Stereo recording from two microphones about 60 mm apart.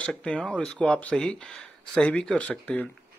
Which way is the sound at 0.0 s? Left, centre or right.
Centre.